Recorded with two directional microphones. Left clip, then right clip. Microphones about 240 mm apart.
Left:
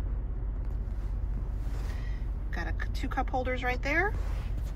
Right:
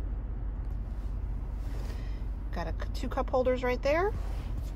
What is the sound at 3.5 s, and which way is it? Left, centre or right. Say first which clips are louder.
Speech: right 3 dB; right.